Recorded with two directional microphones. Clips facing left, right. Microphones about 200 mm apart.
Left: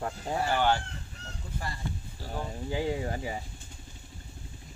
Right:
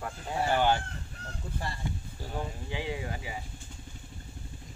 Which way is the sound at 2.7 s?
40° left (ahead or behind).